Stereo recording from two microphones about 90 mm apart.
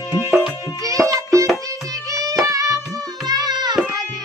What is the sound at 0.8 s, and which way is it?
Music, 40° right (ahead or behind).